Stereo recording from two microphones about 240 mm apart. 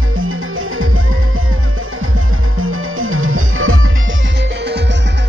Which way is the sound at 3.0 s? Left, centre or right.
Right.